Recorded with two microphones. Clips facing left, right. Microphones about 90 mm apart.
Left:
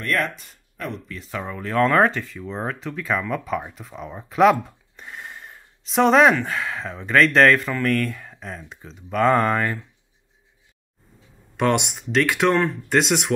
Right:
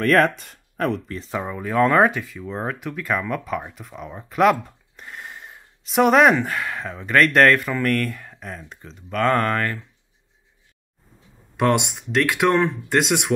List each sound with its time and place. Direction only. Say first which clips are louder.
0.0 s speech: right 7 dB; 50° right (ahead or behind)
0.3 s speech: right 2 dB; centre (ahead or behind)
1.3 s speech: right 1 dB; 15° right (ahead or behind); by 9.8 s 10° left (ahead or behind)
11.5 s speech: right 1 dB; centre (ahead or behind)